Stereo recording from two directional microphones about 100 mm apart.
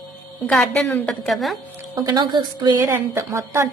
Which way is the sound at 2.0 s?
50° right (ahead or behind).